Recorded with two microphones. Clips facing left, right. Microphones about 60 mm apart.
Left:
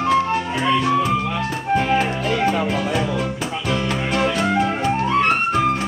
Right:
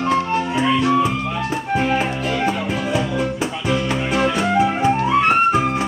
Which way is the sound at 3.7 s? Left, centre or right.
Centre.